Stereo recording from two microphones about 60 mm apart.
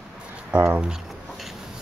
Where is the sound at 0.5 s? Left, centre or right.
Right.